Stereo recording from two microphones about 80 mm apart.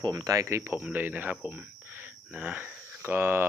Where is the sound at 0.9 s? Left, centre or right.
Right.